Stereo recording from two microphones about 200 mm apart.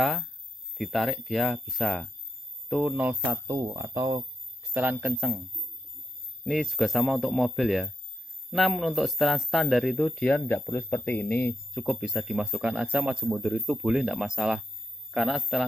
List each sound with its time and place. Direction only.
0.0 s speech: centre (ahead or behind)
3.3 s speech: 20° right (ahead or behind)
4.7 s speech: 10° right (ahead or behind)